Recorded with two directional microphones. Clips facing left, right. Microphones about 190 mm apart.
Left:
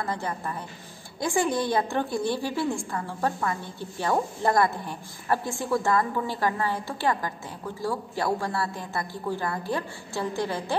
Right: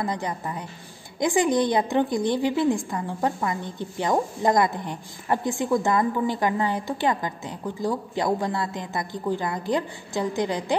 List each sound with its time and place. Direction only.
0.0 s a woman's voice: 15° right (ahead or behind)